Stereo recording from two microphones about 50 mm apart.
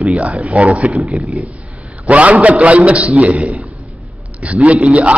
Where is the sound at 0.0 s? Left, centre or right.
Right.